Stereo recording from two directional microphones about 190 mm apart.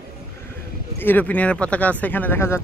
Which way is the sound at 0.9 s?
10° left (ahead or behind).